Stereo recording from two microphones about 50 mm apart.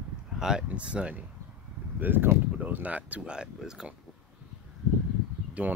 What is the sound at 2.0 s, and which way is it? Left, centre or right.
Speech, right.